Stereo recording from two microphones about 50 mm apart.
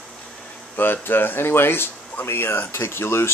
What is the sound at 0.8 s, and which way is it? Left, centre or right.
Speech, left.